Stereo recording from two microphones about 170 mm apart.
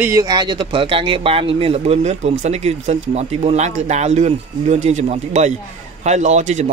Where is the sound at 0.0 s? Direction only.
20° right (ahead or behind).